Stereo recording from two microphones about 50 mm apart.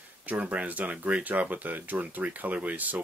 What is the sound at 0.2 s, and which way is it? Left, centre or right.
Speech, right.